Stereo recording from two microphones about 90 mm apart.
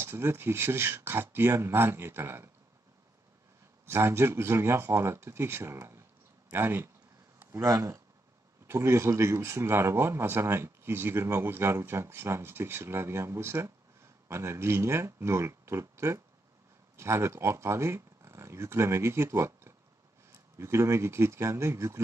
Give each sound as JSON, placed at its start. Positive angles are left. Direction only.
{"t": 0.0, "sound": "a man's voice", "side_deg": -25}
{"t": 3.8, "sound": "a man's voice", "side_deg": -30}